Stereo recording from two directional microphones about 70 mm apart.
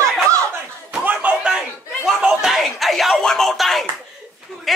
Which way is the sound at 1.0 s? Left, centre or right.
Right.